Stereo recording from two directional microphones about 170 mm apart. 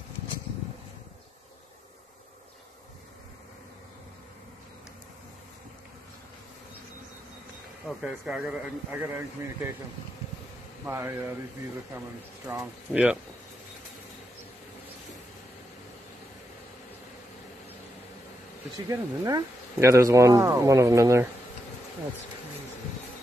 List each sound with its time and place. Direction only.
7.8 s speech: 5° right (ahead or behind)
10.9 s speech: 15° right (ahead or behind)
12.5 s speech: 5° right (ahead or behind)
18.9 s speech: 20° right (ahead or behind)